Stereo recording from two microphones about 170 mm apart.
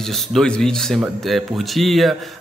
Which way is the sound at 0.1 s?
Centre (ahead or behind).